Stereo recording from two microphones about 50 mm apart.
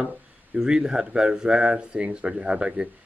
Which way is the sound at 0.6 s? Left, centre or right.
Centre.